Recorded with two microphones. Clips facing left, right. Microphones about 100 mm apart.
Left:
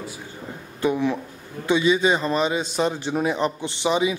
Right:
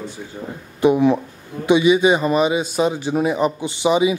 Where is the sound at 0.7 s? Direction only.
20° right (ahead or behind).